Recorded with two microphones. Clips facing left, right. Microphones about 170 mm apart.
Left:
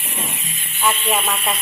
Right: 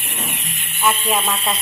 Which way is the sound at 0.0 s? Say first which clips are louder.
Even; 80° right.